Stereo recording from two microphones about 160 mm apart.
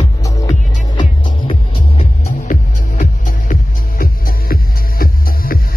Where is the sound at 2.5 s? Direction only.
55° left (ahead or behind).